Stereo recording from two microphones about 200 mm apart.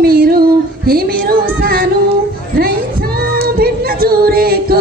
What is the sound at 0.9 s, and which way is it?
Child singing, 50° right (ahead or behind).